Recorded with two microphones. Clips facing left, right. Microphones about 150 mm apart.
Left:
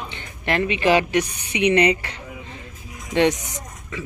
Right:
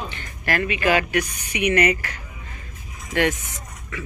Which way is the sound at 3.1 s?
20° left (ahead or behind).